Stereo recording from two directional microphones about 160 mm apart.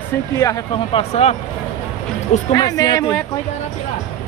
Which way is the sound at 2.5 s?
20° left (ahead or behind).